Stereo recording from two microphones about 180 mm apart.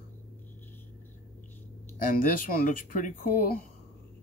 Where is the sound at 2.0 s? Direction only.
50° left (ahead or behind).